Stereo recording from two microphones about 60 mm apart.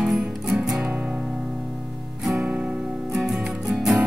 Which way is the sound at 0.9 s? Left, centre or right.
Right.